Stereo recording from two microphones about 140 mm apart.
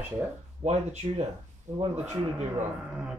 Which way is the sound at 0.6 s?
50° right (ahead or behind).